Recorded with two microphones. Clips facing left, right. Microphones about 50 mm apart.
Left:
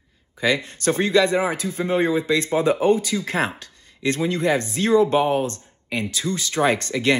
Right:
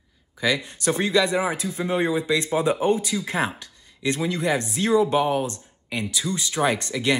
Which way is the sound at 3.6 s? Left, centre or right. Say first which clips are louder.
Left 2 dB; left.